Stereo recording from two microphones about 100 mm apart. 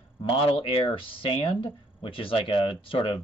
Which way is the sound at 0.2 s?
65° left (ahead or behind).